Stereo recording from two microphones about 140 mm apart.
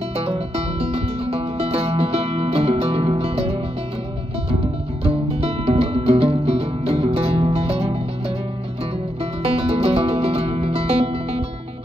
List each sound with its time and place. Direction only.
0.2 s music: 45° right (ahead or behind)
5.0 s music: 45° right (ahead or behind)
9.2 s music: 45° right (ahead or behind)